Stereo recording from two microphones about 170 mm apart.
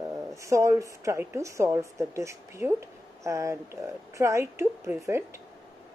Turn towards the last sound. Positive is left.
turn(degrees=-15)  # may be behind; listen again after turning